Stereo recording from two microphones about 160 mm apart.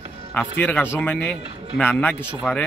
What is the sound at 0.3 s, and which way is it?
A man's voice, 10° left (ahead or behind).